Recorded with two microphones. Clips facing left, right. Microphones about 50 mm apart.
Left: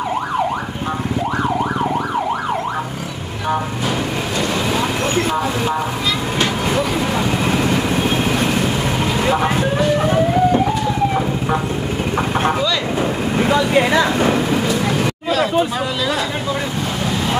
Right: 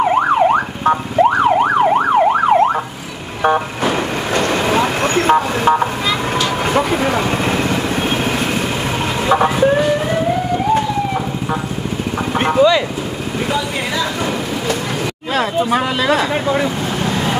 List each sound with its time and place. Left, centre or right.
0.0 s emergency vehicle: right
4.4 s vehicle: right
12.5 s speech: right
13.5 s speech: left
15.3 s speech: right